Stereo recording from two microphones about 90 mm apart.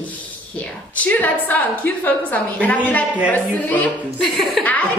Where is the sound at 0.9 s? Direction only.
15° left (ahead or behind).